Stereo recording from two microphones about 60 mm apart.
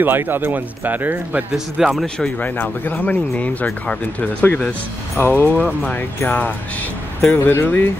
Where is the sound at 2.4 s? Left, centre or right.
Left.